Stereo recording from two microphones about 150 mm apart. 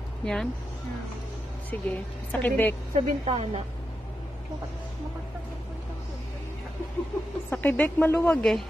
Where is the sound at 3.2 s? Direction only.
40° right (ahead or behind).